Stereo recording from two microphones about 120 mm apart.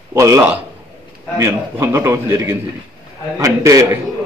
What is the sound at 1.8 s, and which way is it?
Speech, 20° right (ahead or behind).